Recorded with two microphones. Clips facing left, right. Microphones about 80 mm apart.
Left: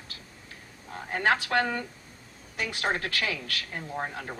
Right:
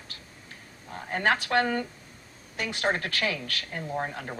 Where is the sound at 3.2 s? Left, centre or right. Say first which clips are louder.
Right 2 dB; right.